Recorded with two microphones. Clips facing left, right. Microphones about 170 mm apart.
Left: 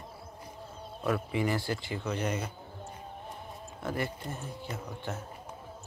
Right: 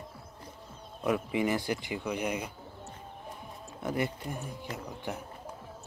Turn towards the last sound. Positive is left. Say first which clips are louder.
# even
turn(degrees=-15)  # may be behind; listen again after turning